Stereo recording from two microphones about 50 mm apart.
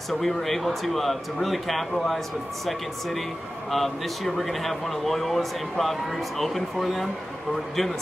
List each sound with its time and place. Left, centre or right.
0.1 s speech: centre